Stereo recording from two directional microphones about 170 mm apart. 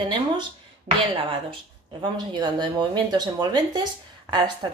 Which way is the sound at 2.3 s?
25° right (ahead or behind).